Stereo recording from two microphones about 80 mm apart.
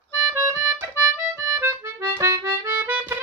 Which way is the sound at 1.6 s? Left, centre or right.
Right.